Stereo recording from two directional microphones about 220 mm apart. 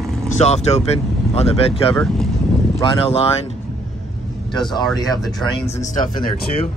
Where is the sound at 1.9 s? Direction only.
5° left (ahead or behind).